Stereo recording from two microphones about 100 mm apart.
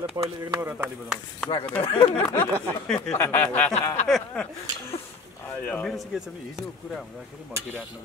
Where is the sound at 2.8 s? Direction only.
Centre (ahead or behind).